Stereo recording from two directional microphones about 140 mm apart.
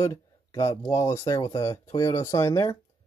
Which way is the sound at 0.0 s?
20° left (ahead or behind).